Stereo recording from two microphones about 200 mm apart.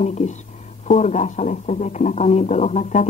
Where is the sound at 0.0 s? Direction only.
35° left (ahead or behind).